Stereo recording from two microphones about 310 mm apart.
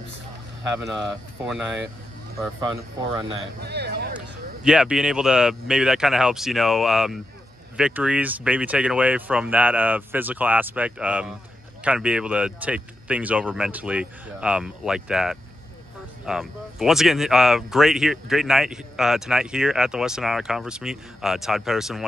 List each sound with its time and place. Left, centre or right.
0.7 s speech: centre
3.6 s speech: right
4.6 s speech: centre